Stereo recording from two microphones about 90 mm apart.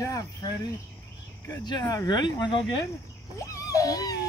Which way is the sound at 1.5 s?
50° left (ahead or behind).